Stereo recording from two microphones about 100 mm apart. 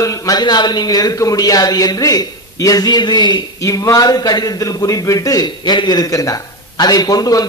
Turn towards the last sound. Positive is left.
turn(degrees=40)  # may be behind; listen again after turning